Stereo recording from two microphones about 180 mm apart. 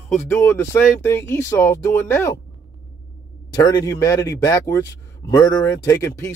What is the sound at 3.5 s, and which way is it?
Speech, 20° left (ahead or behind).